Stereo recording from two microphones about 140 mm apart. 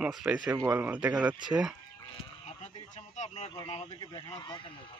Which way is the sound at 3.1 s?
55° left (ahead or behind).